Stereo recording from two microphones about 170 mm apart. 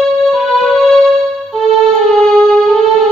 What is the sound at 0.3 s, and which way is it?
Music, centre (ahead or behind).